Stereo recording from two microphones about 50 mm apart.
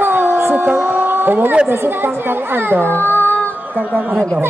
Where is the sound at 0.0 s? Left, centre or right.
Right.